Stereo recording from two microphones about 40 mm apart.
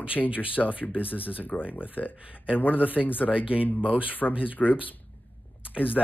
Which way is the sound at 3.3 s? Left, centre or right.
Right.